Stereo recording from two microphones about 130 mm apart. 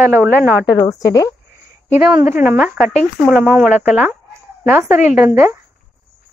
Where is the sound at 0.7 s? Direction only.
25° left (ahead or behind).